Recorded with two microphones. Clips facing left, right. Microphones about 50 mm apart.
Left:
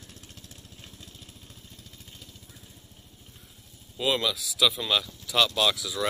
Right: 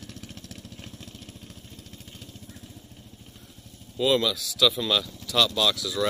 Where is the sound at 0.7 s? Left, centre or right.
Right.